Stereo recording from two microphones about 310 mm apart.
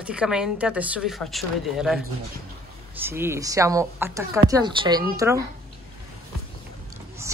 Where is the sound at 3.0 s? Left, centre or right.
Centre.